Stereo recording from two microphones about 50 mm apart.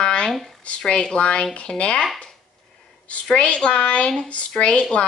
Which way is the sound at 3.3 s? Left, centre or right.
Left.